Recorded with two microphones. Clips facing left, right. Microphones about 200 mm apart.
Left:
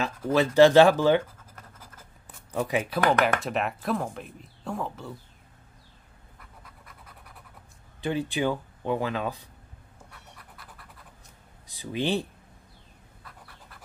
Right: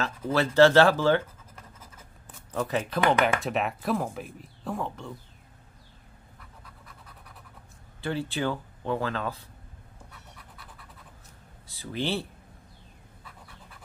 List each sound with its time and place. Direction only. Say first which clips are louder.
0.0 s speech: left 2 dB; 15° left (ahead or behind)
2.2 s speech: left 1 dB; 10° left (ahead or behind)
8.0 s speech: left 2 dB; 15° left (ahead or behind)
11.6 s speech: left 2 dB; 15° left (ahead or behind)